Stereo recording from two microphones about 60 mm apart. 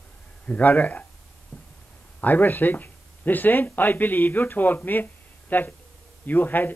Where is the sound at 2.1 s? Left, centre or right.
Left.